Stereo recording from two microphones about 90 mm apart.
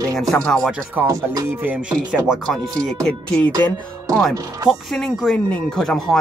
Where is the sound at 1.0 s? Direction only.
40° right (ahead or behind).